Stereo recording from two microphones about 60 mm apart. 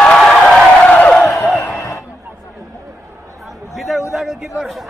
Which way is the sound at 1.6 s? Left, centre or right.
Left.